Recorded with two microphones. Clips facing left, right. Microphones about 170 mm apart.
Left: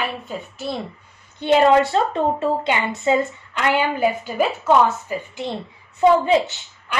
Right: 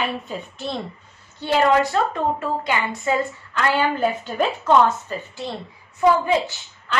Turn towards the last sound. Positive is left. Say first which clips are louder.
# right 2 dB
turn(degrees=20)  # may be behind; listen again after turning